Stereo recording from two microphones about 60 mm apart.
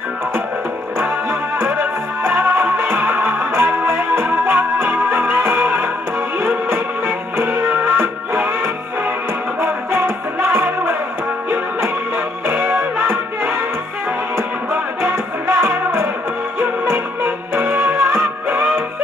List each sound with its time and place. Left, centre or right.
1.6 s music: right
9.6 s music: right
12.4 s music: right
14.7 s music: right